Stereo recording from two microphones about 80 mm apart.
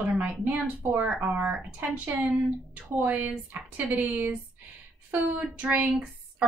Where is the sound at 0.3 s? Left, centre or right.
Right.